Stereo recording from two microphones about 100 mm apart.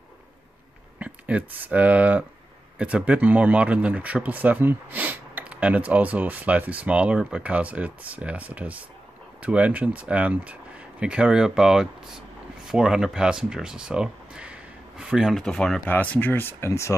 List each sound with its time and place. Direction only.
0.9 s speech: 15° right (ahead or behind); by 16.9 s 30° left (ahead or behind)